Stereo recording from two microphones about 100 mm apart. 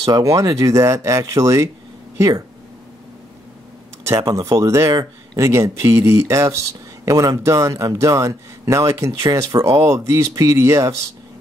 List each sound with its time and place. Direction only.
0.1 s speech: 35° right (ahead or behind)
4.0 s speech: 35° right (ahead or behind)